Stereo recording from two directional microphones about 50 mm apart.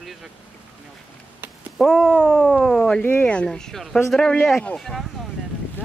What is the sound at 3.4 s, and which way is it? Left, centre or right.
Speech, centre.